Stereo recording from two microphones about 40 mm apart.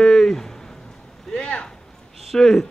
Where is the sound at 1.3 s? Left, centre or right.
Left.